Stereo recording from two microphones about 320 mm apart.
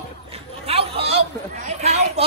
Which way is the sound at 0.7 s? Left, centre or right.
Centre.